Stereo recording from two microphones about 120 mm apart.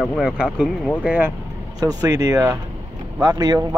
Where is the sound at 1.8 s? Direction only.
30° right (ahead or behind).